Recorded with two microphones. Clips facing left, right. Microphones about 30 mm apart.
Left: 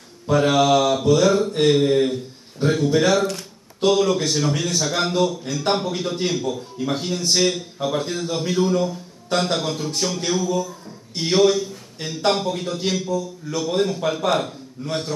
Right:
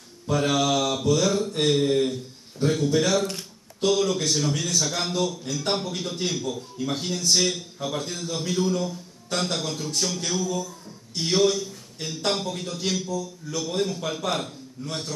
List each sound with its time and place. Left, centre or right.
0.3 s a man's voice: centre